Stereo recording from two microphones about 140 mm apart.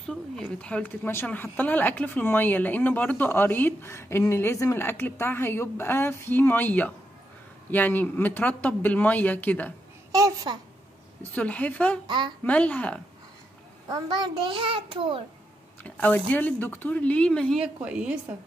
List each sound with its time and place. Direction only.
0.0 s a woman's voice: 5° left (ahead or behind)
10.1 s a child's voice: 30° right (ahead or behind)
11.3 s a woman's voice: 10° left (ahead or behind)
13.8 s a child's voice: 30° right (ahead or behind)
15.8 s a woman's voice: 10° left (ahead or behind)
17.6 s speech: 5° right (ahead or behind)